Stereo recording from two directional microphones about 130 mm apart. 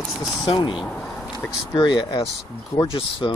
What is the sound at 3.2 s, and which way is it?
Speech, 35° left (ahead or behind).